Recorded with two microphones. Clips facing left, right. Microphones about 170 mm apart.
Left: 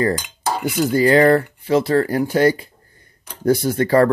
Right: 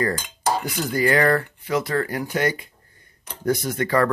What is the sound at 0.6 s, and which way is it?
Dishes, 5° left (ahead or behind).